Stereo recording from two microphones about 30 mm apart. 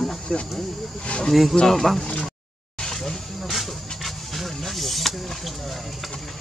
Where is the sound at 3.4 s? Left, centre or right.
Centre.